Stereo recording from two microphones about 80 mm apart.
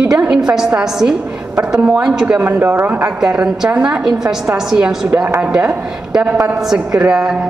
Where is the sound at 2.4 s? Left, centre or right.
Right.